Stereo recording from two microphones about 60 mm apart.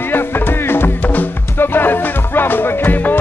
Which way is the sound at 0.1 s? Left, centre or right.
Left.